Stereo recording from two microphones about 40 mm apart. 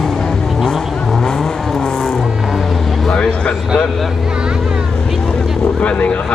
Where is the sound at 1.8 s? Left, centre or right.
Centre.